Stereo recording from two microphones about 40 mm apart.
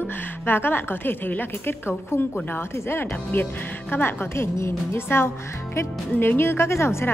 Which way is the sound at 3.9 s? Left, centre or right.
Left.